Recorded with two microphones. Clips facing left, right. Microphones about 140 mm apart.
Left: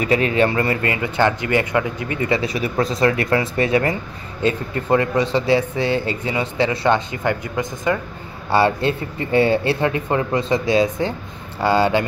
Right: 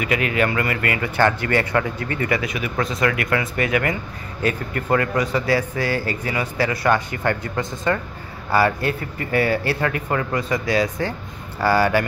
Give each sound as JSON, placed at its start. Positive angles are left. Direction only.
{"t": 0.0, "sound": "a man's voice", "side_deg": 30}
{"t": 8.5, "sound": "a man's voice", "side_deg": 25}